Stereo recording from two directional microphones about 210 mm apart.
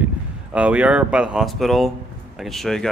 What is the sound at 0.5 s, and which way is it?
Speech, 5° right (ahead or behind).